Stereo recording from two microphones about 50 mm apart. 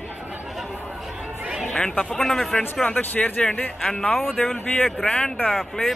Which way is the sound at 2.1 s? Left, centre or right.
Centre.